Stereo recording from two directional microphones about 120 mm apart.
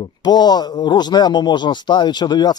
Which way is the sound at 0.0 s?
35° left (ahead or behind).